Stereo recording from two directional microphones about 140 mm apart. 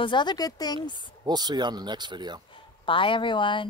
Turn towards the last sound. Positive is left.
turn(degrees=35)  # may be behind; listen again after turning